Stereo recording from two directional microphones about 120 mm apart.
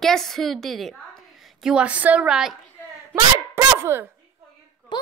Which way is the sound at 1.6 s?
10° right (ahead or behind).